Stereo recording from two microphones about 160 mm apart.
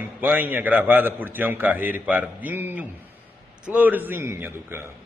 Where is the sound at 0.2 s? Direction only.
10° right (ahead or behind).